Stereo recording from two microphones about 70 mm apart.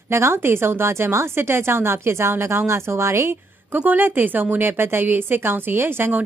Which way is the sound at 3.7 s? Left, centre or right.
Right.